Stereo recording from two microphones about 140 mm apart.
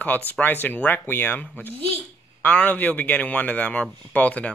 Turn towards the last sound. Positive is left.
turn(degrees=10)  # may be behind; listen again after turning